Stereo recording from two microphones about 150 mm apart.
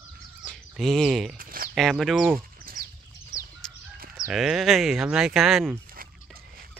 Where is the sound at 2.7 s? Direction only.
80° right.